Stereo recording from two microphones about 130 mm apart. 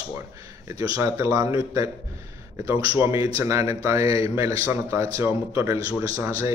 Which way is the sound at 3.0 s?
25° right (ahead or behind).